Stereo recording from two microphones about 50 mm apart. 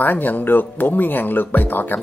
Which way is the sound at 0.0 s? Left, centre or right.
Left.